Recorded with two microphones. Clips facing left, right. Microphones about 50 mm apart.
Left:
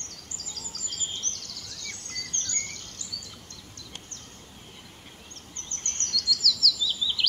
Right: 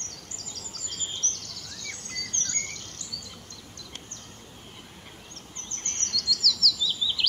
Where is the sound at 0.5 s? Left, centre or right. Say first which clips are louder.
Left 1 dB; centre.